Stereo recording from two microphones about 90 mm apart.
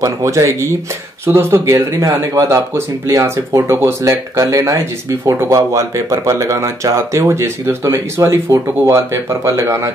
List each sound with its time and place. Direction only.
0.0 s speech: 35° right (ahead or behind)